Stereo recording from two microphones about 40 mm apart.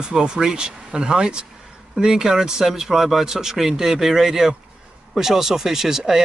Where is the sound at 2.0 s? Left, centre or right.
Centre.